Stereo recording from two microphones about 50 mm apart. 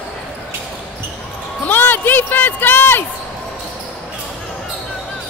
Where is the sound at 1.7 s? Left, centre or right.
Left.